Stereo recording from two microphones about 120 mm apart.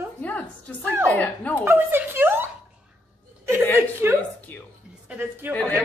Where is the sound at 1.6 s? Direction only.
20° right (ahead or behind).